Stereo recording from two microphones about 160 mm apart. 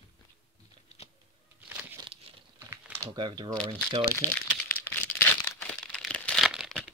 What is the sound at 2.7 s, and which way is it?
Typing, 15° right (ahead or behind).